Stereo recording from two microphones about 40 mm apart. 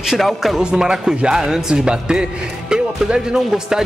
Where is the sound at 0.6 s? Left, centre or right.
Right.